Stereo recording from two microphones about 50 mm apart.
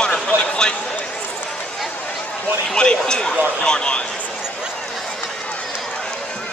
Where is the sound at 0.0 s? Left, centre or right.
Centre.